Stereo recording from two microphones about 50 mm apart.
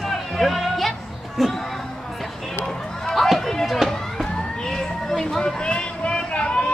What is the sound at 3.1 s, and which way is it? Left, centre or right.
Chatter, centre.